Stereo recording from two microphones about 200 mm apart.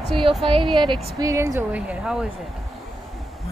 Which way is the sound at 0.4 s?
25° right (ahead or behind).